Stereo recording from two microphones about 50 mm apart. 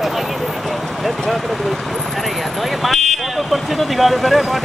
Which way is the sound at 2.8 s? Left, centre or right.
Centre.